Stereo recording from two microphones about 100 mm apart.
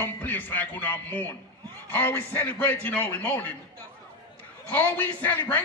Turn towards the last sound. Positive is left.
turn(degrees=20)  # may be behind; listen again after turning